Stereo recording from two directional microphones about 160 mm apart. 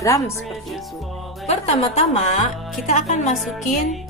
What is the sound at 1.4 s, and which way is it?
A woman's voice, 40° left (ahead or behind).